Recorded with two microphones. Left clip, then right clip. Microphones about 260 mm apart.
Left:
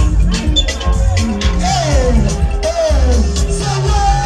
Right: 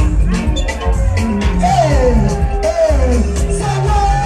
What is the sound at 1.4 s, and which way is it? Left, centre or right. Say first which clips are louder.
Music: right 5 dB; right.